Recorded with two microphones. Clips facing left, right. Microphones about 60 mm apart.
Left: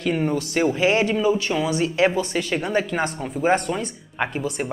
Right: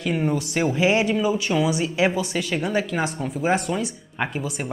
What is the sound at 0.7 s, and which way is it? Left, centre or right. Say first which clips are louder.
Speech: even; centre.